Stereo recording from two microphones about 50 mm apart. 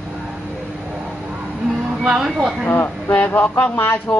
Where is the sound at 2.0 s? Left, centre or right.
Centre.